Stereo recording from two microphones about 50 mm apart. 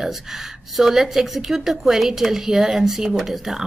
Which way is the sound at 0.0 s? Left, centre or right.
Centre.